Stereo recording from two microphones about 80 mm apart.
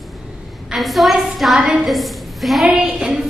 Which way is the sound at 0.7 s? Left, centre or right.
Centre.